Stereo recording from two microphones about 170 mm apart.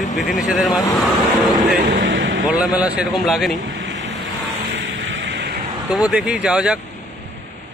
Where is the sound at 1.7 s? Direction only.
55° right (ahead or behind).